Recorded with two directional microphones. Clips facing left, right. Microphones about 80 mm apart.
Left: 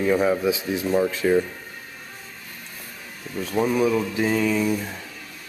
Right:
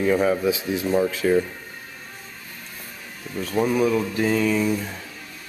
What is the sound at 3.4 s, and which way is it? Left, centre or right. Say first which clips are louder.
Speech: even; centre.